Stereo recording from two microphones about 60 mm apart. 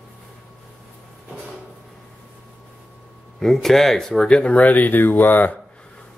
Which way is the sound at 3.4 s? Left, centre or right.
Centre.